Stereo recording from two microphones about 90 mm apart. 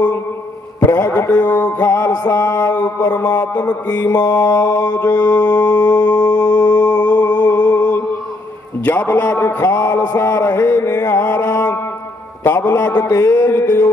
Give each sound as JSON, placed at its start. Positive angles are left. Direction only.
{"t": 0.8, "sound": "a man's voice", "side_deg": 30}
{"t": 1.2, "sound": "music", "side_deg": 45}
{"t": 1.5, "sound": "mantra", "side_deg": 20}
{"t": 3.9, "sound": "mantra", "side_deg": 40}
{"t": 5.2, "sound": "music", "side_deg": 45}
{"t": 6.8, "sound": "a sound", "side_deg": 45}
{"t": 7.3, "sound": "music", "side_deg": 15}
{"t": 7.7, "sound": "mantra", "side_deg": 20}
{"t": 8.8, "sound": "a man's voice", "side_deg": 20}
{"t": 9.8, "sound": "music", "side_deg": 40}
{"t": 11.3, "sound": "a sound", "side_deg": 35}
{"t": 12.4, "sound": "a man's voice", "side_deg": 25}